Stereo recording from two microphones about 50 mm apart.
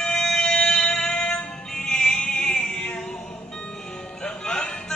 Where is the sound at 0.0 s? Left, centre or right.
Centre.